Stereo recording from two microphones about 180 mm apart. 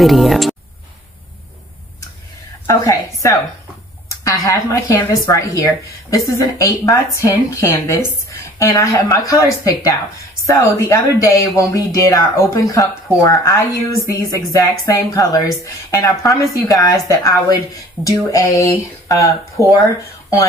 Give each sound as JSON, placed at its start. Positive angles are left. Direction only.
{"t": 0.0, "sound": "speech", "side_deg": 0}
{"t": 2.6, "sound": "a woman's voice", "side_deg": 15}